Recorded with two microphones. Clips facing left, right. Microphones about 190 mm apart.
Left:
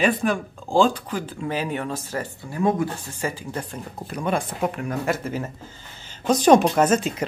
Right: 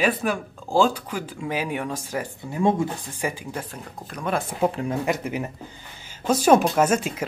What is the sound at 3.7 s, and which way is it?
Speech, centre (ahead or behind).